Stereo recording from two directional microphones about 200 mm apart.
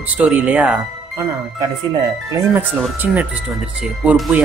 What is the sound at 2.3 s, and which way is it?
Speech, 10° right (ahead or behind).